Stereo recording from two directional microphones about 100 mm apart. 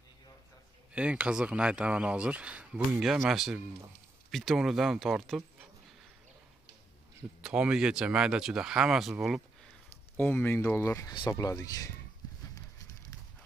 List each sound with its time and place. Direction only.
0.9 s speech: 10° right (ahead or behind)
7.4 s speech: 10° right (ahead or behind)
10.1 s speech: 20° left (ahead or behind); by 11.9 s 35° left (ahead or behind)
12.5 s a sound: 35° left (ahead or behind)